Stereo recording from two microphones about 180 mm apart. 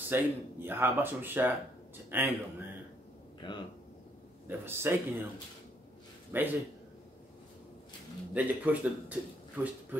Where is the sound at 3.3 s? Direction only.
25° left (ahead or behind).